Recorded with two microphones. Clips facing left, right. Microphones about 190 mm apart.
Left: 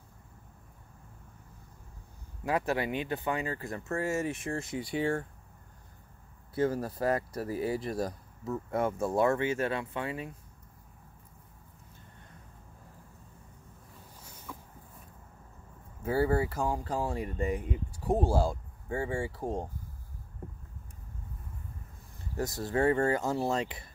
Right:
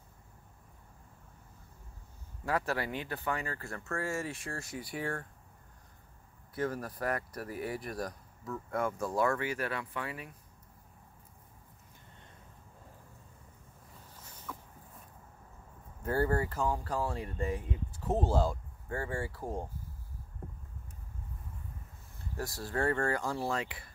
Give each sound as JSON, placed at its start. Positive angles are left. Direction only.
{"t": 2.4, "sound": "speech", "side_deg": 20}
{"t": 6.5, "sound": "speech", "side_deg": 25}
{"t": 14.2, "sound": "a sound", "side_deg": 10}
{"t": 16.0, "sound": "speech", "side_deg": 10}
{"t": 22.4, "sound": "speech", "side_deg": 20}